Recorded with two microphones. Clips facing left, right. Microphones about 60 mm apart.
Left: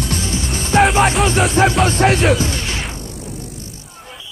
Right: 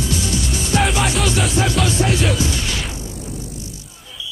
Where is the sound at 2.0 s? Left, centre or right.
Left.